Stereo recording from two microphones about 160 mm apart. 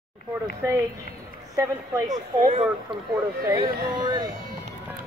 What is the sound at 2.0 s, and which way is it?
Speech, 50° right (ahead or behind).